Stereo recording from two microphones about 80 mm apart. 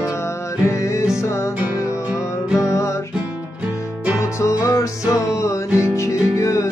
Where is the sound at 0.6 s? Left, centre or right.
Left.